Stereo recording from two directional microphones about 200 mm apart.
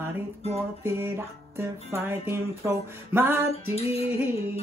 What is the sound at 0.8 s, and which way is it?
Music, 10° right (ahead or behind).